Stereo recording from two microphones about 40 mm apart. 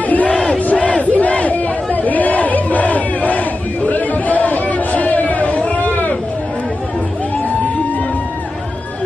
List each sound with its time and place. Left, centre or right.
0.0 s crowd: left
0.6 s battle cry: left